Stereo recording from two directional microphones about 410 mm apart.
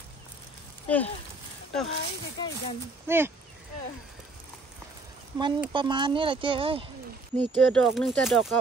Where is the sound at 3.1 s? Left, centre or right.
Centre.